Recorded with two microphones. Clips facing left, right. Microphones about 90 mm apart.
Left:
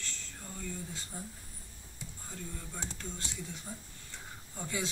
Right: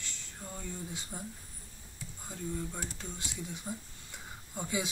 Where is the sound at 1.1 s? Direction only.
20° right (ahead or behind).